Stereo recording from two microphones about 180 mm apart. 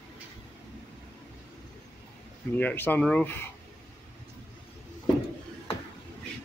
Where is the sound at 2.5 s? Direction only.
10° left (ahead or behind).